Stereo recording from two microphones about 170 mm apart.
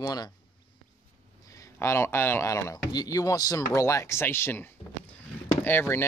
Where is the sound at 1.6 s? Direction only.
15° left (ahead or behind).